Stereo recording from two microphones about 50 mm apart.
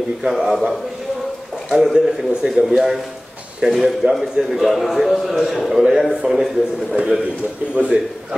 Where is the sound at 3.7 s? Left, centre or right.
Centre.